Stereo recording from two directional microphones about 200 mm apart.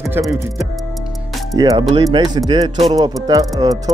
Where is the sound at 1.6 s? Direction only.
20° right (ahead or behind).